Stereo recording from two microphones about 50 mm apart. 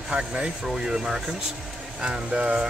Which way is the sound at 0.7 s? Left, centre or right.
Centre.